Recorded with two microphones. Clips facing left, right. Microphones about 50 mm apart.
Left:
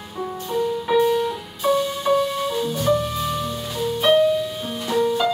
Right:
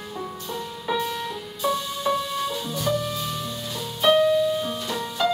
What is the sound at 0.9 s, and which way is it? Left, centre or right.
Music, centre.